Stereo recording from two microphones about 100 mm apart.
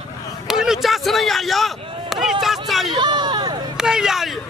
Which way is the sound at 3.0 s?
50° right (ahead or behind).